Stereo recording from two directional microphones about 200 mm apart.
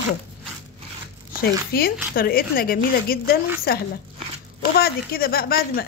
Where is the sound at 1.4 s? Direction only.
50° left (ahead or behind).